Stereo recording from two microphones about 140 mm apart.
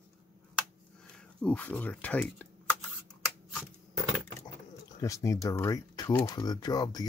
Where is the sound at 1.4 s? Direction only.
10° left (ahead or behind).